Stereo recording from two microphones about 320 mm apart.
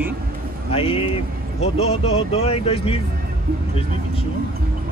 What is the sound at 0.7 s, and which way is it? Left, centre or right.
Speech, centre.